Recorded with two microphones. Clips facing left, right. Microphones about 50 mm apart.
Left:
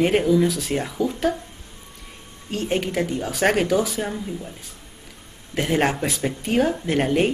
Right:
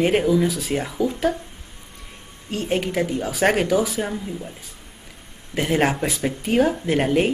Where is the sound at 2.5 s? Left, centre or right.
Centre.